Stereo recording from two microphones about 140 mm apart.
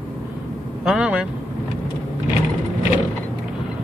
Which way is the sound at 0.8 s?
5° right (ahead or behind).